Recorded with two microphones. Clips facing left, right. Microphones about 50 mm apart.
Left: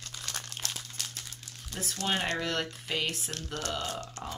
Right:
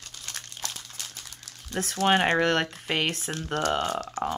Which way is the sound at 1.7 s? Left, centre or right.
Right.